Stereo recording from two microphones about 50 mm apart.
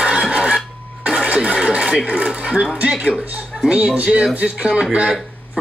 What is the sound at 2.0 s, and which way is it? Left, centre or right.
Speech, centre.